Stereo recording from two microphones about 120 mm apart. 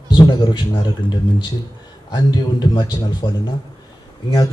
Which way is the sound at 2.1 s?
35° left (ahead or behind).